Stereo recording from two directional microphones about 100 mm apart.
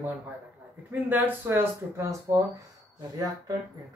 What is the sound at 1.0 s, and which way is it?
Speech, 20° right (ahead or behind).